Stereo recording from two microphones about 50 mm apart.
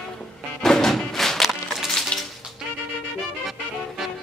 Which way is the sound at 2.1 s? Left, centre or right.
Left.